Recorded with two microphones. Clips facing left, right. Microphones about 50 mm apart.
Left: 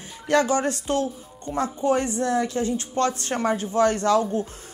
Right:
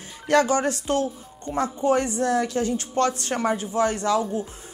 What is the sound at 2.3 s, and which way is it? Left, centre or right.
Speech, left.